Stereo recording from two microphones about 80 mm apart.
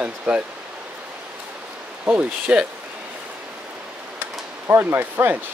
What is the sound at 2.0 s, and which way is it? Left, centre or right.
Speech, centre.